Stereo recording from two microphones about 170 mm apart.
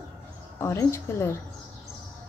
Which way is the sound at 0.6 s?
15° left (ahead or behind).